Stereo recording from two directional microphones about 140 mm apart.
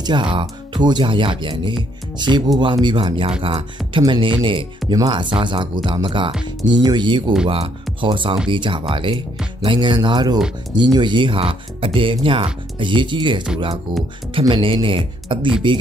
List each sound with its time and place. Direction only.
0.0 s speech: 35° right (ahead or behind)